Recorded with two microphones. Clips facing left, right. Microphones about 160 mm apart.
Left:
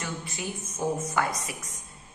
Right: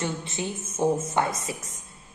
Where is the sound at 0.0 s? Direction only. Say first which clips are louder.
Right 5 dB; 25° right (ahead or behind).